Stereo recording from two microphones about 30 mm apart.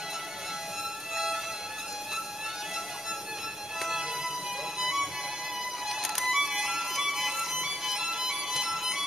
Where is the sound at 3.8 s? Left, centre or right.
Centre.